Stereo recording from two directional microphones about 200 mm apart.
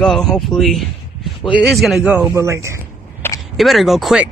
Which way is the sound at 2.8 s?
10° left (ahead or behind).